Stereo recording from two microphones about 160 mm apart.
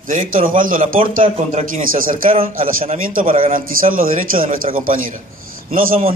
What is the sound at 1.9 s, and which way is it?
Speech, 60° right (ahead or behind).